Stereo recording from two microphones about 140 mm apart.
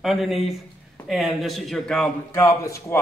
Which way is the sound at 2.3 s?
20° left (ahead or behind).